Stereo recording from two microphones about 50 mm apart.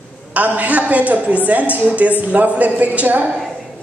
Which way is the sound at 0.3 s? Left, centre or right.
Right.